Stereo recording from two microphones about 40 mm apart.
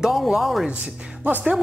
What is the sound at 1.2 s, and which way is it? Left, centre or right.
Speech, right.